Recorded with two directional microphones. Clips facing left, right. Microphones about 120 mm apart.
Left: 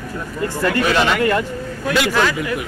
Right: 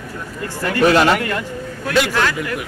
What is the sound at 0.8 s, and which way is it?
Speech, 40° right (ahead or behind).